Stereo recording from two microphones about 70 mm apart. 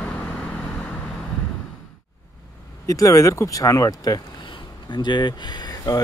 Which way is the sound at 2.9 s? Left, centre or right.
Left.